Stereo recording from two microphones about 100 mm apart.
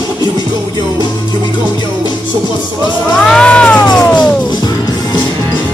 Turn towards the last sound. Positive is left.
turn(degrees=10)  # may be behind; listen again after turning